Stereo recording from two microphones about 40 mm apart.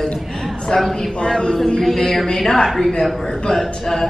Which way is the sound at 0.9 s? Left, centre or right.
Left.